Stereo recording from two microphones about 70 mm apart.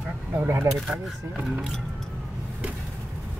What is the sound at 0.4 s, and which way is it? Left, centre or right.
Speech, right.